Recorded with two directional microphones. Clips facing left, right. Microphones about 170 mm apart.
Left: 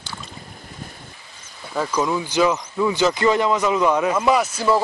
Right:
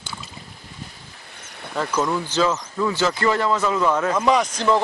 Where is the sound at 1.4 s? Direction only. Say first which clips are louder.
Right 2 dB; 65° right (ahead or behind).